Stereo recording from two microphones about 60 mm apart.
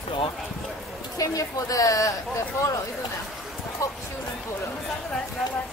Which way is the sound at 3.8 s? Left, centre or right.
Left.